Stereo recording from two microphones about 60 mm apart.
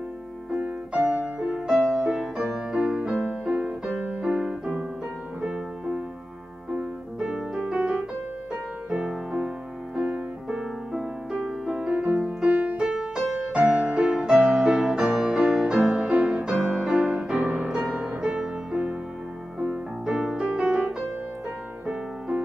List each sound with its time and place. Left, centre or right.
0.6 s music: right
1.0 s music: centre
3.3 s music: right
10.9 s music: centre; by 12.8 s right
12.8 s music: centre
18.0 s music: centre